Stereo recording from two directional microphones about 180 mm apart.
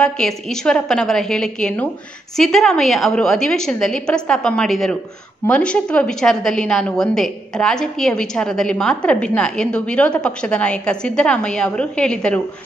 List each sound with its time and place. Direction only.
0.0 s a woman's voice: 5° left (ahead or behind)